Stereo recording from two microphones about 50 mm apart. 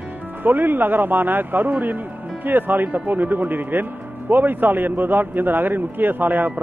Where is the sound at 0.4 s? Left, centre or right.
Right.